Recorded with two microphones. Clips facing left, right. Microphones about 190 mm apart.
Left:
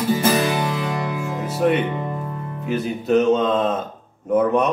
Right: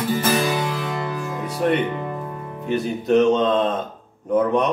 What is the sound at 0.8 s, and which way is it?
Music, centre (ahead or behind).